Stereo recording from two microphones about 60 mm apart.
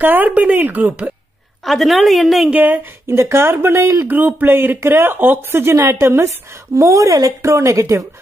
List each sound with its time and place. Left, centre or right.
0.0 s speech: right
1.6 s a woman's voice: centre
2.5 s speech: right
3.1 s speech: right
3.8 s speech: right
4.1 s speech: right
6.8 s speech: right
7.4 s speech: right